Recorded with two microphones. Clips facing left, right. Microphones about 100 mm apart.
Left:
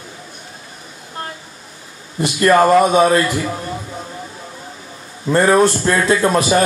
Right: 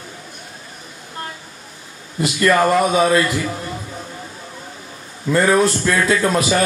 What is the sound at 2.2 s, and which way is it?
A man's voice, 25° left (ahead or behind).